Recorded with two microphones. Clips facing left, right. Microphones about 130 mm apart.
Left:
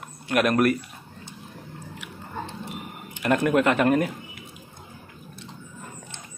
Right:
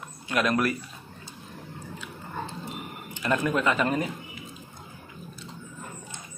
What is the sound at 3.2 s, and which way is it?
Speech, 60° left (ahead or behind).